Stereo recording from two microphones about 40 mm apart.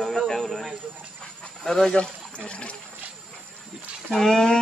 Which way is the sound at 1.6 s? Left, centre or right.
Centre.